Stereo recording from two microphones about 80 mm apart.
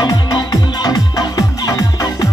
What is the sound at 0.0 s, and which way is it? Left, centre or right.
Music, left.